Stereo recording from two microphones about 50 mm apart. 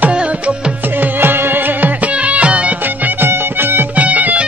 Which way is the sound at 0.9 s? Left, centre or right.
Right.